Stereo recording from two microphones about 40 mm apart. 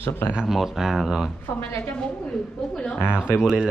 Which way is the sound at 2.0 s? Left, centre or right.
Centre.